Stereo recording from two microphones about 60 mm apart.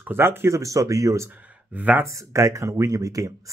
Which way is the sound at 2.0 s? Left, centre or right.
Right.